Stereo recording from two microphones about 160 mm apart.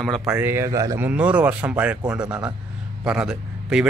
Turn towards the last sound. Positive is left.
turn(degrees=-5)  # may be behind; listen again after turning